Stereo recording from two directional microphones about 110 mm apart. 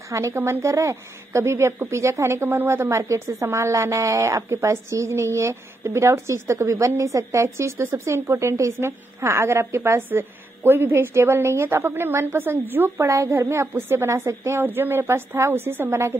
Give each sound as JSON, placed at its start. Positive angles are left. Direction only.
{"t": 0.1, "sound": "a woman's voice", "side_deg": -25}